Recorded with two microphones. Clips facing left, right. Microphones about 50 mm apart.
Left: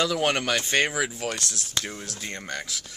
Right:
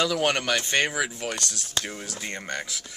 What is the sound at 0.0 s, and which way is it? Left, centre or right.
A man's voice, centre.